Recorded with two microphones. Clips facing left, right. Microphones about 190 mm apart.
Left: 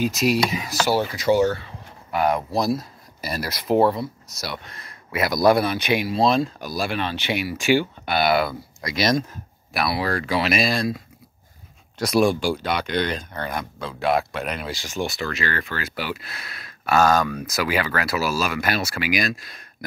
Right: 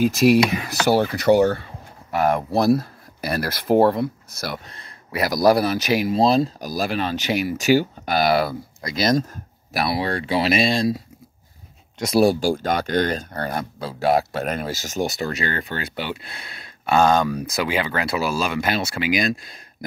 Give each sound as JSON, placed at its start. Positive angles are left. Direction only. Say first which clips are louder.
{"t": 0.0, "sound": "speech", "louder": "right 5 dB", "side_deg": -55}
{"t": 4.6, "sound": "speech", "louder": "even", "side_deg": -35}
{"t": 12.2, "sound": "speech", "louder": "right 3 dB", "side_deg": -40}
{"t": 15.6, "sound": "speech", "louder": "right 1 dB", "side_deg": -30}